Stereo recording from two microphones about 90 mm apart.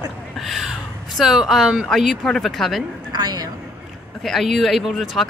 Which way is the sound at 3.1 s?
45° right (ahead or behind).